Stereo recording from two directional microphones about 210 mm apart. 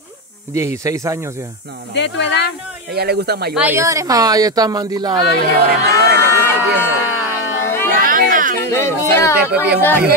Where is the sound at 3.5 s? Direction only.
10° right (ahead or behind).